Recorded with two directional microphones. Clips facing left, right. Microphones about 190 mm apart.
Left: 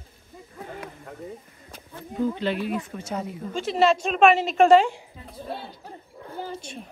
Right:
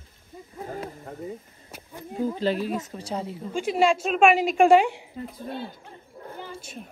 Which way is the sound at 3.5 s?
10° right (ahead or behind).